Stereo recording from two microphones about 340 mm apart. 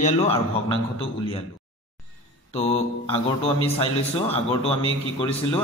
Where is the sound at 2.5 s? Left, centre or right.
Centre.